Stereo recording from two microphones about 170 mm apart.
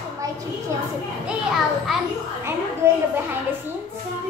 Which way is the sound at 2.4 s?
15° right (ahead or behind).